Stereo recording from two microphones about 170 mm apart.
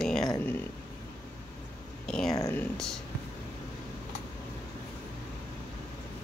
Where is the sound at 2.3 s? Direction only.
20° left (ahead or behind).